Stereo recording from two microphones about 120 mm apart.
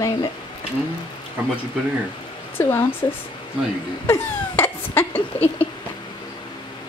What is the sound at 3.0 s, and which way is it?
Speech, 40° left (ahead or behind).